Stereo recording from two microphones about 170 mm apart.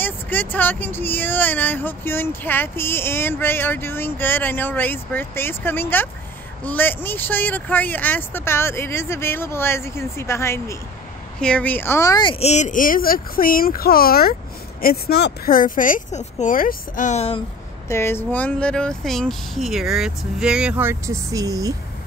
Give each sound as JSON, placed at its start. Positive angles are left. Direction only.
{"t": 0.0, "sound": "speech", "side_deg": 10}
{"t": 17.8, "sound": "speech", "side_deg": 15}